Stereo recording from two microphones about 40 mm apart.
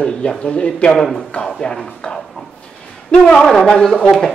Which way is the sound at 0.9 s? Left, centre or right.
Centre.